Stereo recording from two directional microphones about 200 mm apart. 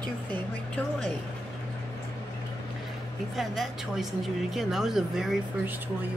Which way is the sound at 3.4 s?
Centre (ahead or behind).